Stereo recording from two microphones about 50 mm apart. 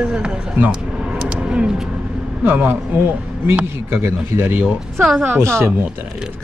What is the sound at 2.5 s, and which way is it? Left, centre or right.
Speech, right.